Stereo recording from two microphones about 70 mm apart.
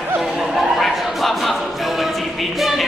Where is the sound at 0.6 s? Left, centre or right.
Centre.